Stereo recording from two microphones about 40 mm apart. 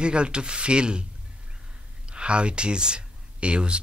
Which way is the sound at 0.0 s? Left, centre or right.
Right.